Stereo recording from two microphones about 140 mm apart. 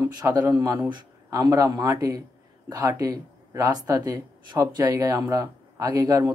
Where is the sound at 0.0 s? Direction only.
25° right (ahead or behind).